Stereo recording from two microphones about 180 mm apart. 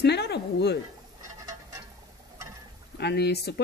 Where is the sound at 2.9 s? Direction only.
65° left (ahead or behind).